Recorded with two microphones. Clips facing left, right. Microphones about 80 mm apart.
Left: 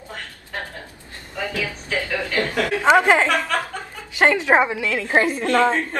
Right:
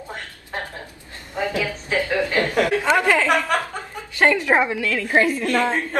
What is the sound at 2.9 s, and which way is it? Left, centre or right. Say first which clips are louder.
A woman's voice: left 6 dB; left.